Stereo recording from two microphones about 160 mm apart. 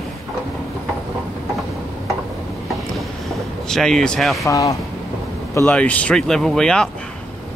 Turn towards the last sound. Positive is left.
turn(degrees=5)  # may be behind; listen again after turning